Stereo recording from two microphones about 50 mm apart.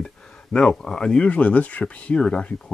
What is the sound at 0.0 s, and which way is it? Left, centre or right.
Speech, centre.